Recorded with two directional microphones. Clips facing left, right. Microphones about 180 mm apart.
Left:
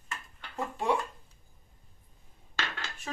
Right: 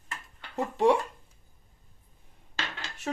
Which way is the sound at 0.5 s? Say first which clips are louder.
Right 7 dB; 75° right (ahead or behind).